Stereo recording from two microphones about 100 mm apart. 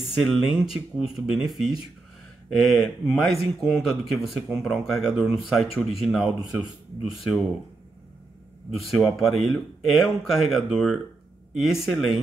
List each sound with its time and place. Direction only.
0.0 s speech: centre (ahead or behind)
8.7 s speech: centre (ahead or behind)